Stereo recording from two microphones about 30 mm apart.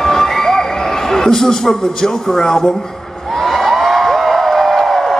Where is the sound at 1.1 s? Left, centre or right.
Centre.